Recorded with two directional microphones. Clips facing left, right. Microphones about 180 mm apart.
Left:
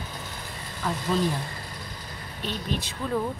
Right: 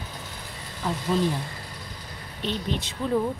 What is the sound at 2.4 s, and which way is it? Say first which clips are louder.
Speech: right 2 dB; 25° right (ahead or behind).